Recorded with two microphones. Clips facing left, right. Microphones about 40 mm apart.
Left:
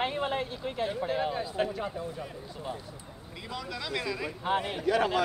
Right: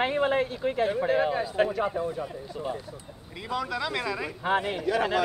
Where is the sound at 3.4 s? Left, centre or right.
Right.